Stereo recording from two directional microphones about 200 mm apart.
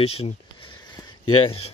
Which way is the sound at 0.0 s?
30° left (ahead or behind).